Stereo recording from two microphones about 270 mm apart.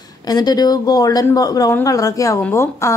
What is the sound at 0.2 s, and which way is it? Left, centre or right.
Speech, centre.